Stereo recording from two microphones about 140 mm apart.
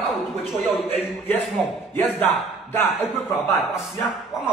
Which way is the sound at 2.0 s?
15° left (ahead or behind).